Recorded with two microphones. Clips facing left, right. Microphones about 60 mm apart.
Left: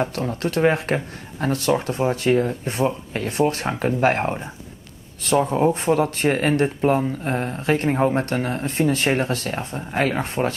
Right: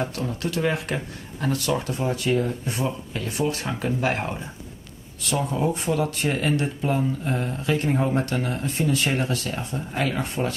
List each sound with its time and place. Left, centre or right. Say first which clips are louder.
0.0 s speech: left 4 dB; left